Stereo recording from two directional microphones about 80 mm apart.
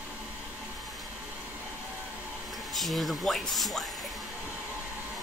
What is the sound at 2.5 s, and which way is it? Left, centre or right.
Speech, centre.